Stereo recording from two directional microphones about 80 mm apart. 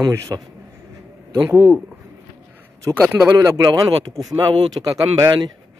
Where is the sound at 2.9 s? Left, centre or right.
Right.